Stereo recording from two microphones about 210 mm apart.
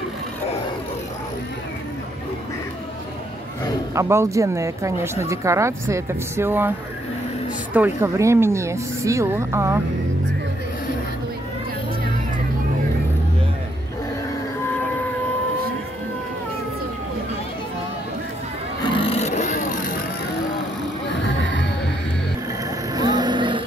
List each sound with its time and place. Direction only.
3.9 s speech: 15° right (ahead or behind)
7.7 s speech: 10° right (ahead or behind)
18.9 s vehicle: 25° left (ahead or behind)
21.1 s music: 60° left (ahead or behind)
22.9 s a sound: 20° right (ahead or behind)